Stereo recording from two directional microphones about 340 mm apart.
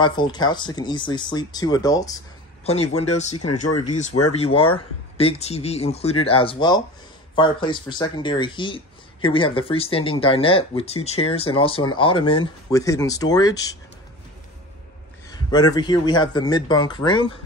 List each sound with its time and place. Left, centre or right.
0.0 s speech: centre
15.2 s speech: centre